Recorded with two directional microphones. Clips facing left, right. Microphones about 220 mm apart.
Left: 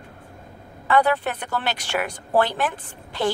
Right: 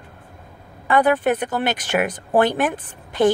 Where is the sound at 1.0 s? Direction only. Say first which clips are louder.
Right 6 dB; 15° right (ahead or behind).